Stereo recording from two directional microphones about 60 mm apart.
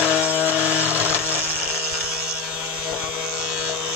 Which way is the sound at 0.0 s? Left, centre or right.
Centre.